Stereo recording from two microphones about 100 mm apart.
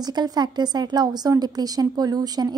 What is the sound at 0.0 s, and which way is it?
A woman's voice, 40° right (ahead or behind).